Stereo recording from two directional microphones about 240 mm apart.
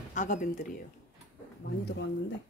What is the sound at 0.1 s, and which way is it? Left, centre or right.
Speech, left.